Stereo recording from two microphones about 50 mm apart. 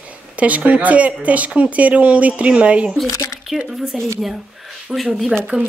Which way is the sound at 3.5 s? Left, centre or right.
Centre.